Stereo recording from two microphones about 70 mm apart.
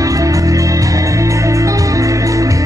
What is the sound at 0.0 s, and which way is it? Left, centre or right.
Music, right.